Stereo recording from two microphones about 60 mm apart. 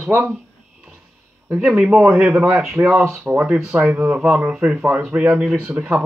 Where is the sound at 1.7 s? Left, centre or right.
Centre.